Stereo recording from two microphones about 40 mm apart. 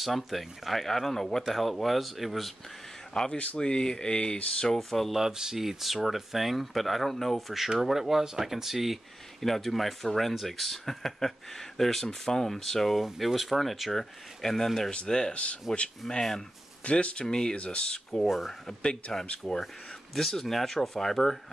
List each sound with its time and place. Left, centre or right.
0.0 s speech: centre
3.1 s speech: centre
3.5 s speech: left
4.7 s speech: centre
5.1 s speech: centre
7.3 s speech: centre
13.0 s speech: centre
14.9 s speech: left
15.3 s speech: left
16.1 s speech: centre
16.8 s speech: left
18.2 s speech: centre
19.2 s speech: left
20.2 s speech: centre